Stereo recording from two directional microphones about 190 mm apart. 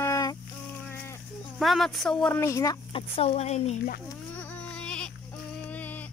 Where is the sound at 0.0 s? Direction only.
15° left (ahead or behind).